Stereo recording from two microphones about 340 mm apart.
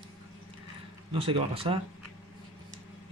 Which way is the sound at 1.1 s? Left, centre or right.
Centre.